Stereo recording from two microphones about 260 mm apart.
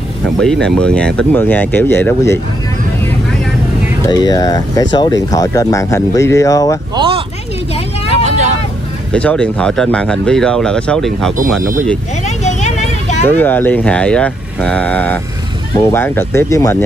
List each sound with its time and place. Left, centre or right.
0.4 s speech: centre
4.0 s speech: centre
7.0 s a sound: centre
9.1 s speech: centre
11.6 s speech: right
12.3 s vehicle: left
13.4 s speech: centre